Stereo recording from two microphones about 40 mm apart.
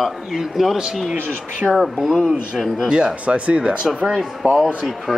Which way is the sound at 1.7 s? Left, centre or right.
Centre.